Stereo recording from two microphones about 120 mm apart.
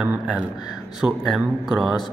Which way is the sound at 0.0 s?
10° right (ahead or behind).